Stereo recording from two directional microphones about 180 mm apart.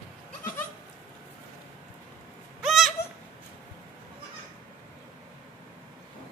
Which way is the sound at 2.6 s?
Centre (ahead or behind).